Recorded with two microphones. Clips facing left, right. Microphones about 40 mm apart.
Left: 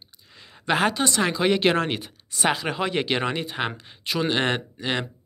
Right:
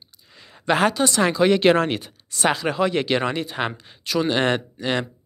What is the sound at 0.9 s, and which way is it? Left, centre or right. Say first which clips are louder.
Speech: right 3 dB; left.